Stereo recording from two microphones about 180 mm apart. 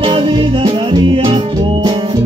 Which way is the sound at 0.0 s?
25° right (ahead or behind).